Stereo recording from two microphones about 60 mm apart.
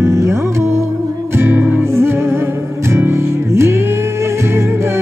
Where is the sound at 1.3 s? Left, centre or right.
Right.